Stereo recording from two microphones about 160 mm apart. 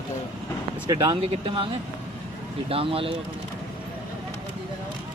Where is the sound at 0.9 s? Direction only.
25° right (ahead or behind).